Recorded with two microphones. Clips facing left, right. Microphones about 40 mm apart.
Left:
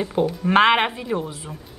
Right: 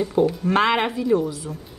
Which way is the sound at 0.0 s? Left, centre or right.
Left.